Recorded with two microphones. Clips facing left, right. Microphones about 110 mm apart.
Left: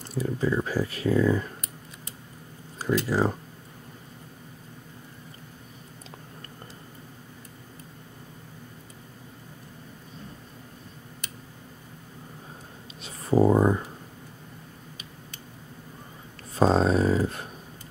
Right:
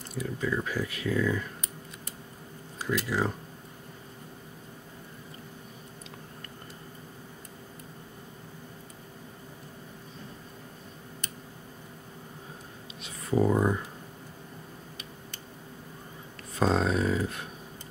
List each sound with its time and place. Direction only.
0.2 s speech: 35° left (ahead or behind)
2.8 s speech: 35° left (ahead or behind)
13.0 s a sound: 35° left (ahead or behind)
16.5 s speech: 35° left (ahead or behind)